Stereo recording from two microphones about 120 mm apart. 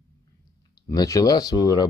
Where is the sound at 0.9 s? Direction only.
30° left (ahead or behind).